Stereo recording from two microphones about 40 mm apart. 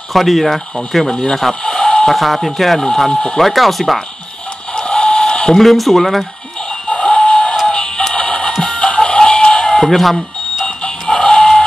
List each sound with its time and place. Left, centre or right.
0.1 s speech: centre
1.3 s a sound: centre
2.1 s speech: centre
2.8 s speech: centre
3.3 s speech: centre
4.7 s a sound: left
5.6 s speech: centre
6.7 s a sound: centre
7.6 s music: centre
10.6 s music: centre